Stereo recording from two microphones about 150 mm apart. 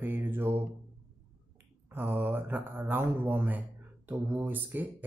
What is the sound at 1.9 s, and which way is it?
Speech, 15° right (ahead or behind).